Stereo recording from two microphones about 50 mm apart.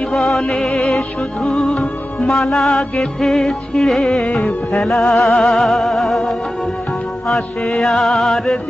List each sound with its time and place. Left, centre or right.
0.1 s music: centre
1.4 s music: centre
2.5 s music: centre